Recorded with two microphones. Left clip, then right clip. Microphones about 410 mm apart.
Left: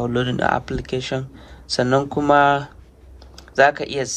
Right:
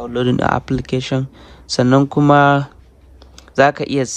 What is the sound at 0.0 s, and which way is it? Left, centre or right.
Speech, centre.